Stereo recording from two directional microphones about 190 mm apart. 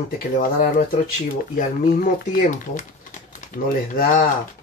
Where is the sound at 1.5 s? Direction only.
50° left (ahead or behind).